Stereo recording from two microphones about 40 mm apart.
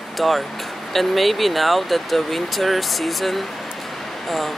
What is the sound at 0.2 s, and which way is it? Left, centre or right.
Speech, centre.